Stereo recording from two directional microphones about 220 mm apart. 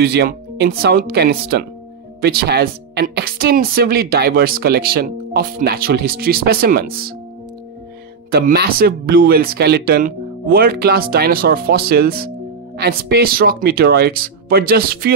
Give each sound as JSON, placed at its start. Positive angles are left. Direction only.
{"t": 0.0, "sound": "speech", "side_deg": -50}
{"t": 8.3, "sound": "speech", "side_deg": -45}